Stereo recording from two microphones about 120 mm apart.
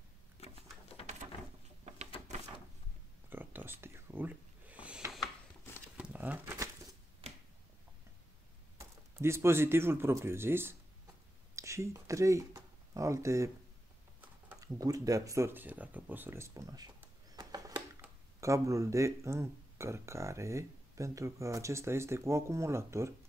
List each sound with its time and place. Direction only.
3.3 s a sound: 15° right (ahead or behind)
5.9 s crumpling: 15° right (ahead or behind)
8.7 s speech: 20° right (ahead or behind)
14.6 s speech: 30° right (ahead or behind)
17.4 s a sound: 35° right (ahead or behind)
18.4 s speech: 25° right (ahead or behind)